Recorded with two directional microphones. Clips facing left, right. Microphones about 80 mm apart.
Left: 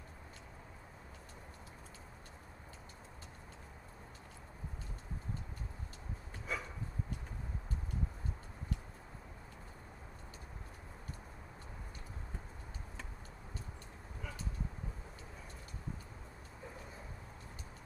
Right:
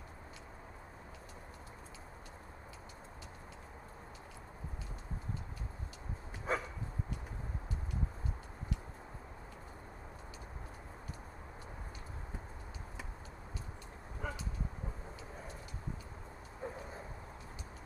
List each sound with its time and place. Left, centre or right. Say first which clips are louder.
6.5 s dog: right 6 dB; right
14.2 s vehicle: right 7 dB; right
16.6 s a sound: right 8 dB; right